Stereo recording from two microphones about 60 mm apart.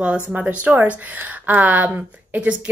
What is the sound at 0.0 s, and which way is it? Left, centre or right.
A woman's voice, centre.